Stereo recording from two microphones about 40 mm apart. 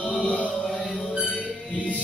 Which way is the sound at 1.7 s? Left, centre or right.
Left.